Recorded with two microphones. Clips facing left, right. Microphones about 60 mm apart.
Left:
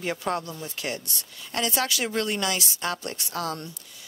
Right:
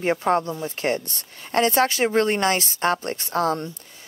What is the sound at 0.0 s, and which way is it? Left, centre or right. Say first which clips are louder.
A woman's voice: right 8 dB; right.